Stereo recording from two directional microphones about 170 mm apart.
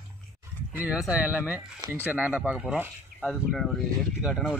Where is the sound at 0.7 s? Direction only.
10° right (ahead or behind).